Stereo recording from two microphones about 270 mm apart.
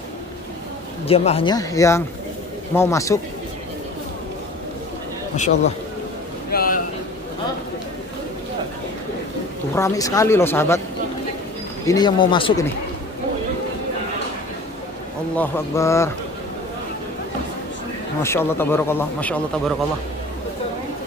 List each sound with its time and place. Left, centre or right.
1.0 s a man's voice: left
6.5 s a sound: left
9.8 s a man's voice: centre
11.8 s a man's voice: centre
15.3 s a man's voice: centre
18.2 s a man's voice: centre